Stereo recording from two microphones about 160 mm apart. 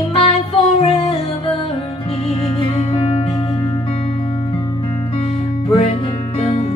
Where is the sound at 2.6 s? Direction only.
35° left (ahead or behind).